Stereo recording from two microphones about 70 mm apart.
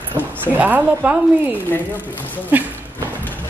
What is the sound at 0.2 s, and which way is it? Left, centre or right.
Speech, right.